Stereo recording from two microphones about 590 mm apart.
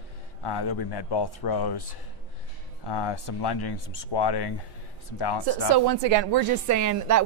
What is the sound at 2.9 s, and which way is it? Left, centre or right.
Speech, left.